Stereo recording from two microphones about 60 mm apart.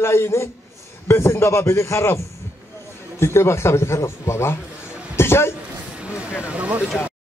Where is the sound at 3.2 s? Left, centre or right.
Left.